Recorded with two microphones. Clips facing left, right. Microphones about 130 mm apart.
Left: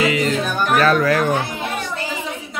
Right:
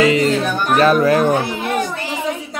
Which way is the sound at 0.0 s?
30° right (ahead or behind).